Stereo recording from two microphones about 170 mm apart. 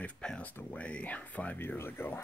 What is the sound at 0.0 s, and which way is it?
Speech, 5° left (ahead or behind).